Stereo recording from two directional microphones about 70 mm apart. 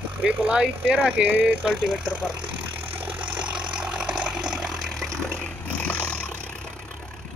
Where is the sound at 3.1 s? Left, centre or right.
Centre.